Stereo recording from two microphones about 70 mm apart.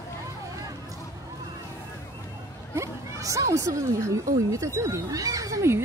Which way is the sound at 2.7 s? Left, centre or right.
Right.